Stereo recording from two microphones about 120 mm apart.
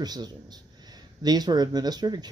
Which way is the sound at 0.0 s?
35° right (ahead or behind).